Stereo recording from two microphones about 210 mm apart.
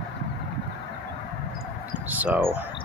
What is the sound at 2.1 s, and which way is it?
Speech, 10° right (ahead or behind).